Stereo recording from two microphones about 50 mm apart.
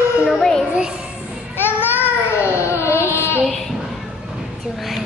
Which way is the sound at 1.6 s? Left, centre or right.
Left.